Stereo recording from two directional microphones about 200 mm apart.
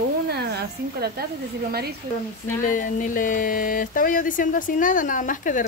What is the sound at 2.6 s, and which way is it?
Speech, 40° left (ahead or behind).